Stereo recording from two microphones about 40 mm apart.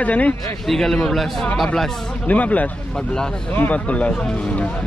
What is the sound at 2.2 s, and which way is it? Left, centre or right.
Speech, left.